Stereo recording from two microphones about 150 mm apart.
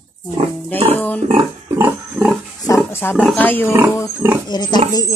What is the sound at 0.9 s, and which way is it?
Speech, 10° left (ahead or behind).